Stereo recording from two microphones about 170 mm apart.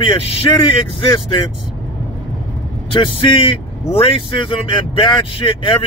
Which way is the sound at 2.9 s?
30° left (ahead or behind).